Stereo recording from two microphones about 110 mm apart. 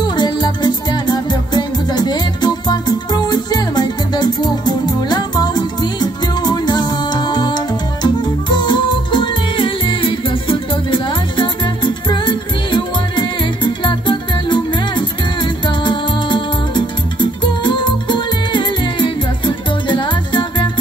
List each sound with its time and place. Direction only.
0.1 s music: 40° left (ahead or behind)